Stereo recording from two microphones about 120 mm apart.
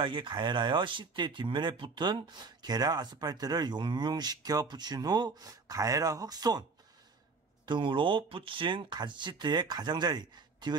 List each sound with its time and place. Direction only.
0.0 s speech: 45° right (ahead or behind)
7.6 s speech: 40° right (ahead or behind)